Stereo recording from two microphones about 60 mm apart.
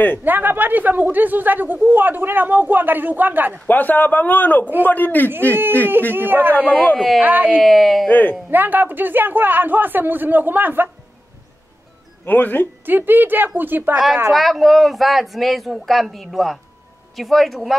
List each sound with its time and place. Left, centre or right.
0.2 s speech: right
3.6 s speech: left
5.3 s speech: right
7.6 s speech: centre
8.1 s speech: left
8.5 s speech: right
12.3 s speech: left
12.8 s speech: right
14.3 s speech: centre